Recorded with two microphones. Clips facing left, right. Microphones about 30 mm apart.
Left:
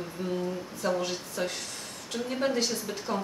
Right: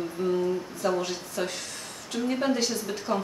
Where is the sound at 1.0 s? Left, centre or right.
Centre.